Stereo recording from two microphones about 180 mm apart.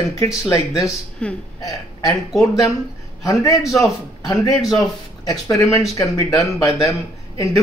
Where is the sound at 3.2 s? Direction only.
20° left (ahead or behind).